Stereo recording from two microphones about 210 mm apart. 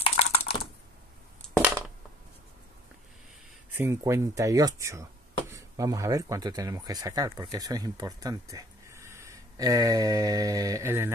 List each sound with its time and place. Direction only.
0.0 s computer keyboard: 30° left (ahead or behind)
1.4 s a sound: 5° left (ahead or behind)
3.7 s speech: 15° right (ahead or behind)